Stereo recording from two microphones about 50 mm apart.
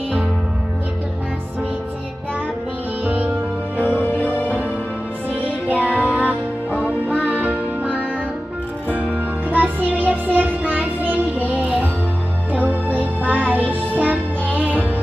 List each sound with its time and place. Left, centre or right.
4.3 s music: right
5.7 s music: right